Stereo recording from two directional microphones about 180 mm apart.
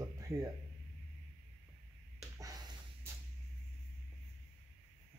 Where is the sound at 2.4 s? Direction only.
20° right (ahead or behind).